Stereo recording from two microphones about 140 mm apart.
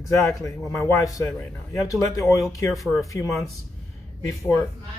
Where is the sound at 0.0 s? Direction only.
25° left (ahead or behind).